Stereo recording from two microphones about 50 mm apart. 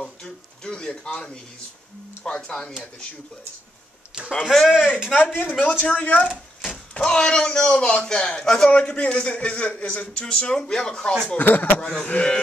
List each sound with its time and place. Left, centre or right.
0.0 s a sound: centre
2.2 s speech: centre
4.5 s speech: centre
5.1 s a man's voice: left
7.0 s a man's voice: centre
11.3 s speech: left
11.8 s a man's voice: centre